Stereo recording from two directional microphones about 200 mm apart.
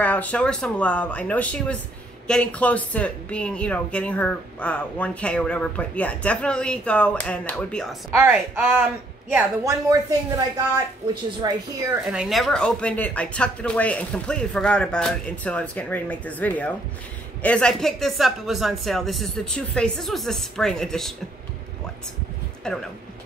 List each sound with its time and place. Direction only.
0.0 s speech: 10° left (ahead or behind)
8.1 s a woman's voice: 10° right (ahead or behind)
11.4 s a woman's voice: 20° right (ahead or behind)
12.1 s speech: centre (ahead or behind)
22.7 s speech: 5° left (ahead or behind)